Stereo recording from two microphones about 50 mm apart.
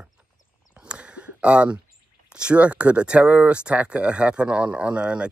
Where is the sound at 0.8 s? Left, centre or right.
Right.